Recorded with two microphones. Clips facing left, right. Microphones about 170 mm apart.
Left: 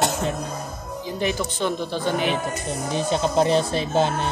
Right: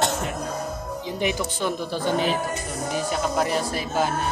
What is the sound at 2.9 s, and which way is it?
Speech, 25° left (ahead or behind).